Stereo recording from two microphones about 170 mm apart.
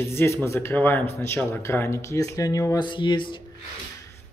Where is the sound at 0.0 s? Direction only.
15° left (ahead or behind).